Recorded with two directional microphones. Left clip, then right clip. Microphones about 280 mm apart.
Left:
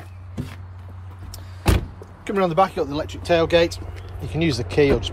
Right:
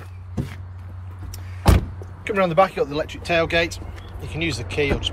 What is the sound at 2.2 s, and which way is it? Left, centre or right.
Speech, centre.